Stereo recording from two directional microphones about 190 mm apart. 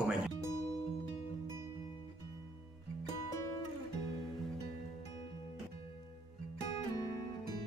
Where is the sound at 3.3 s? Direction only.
15° left (ahead or behind).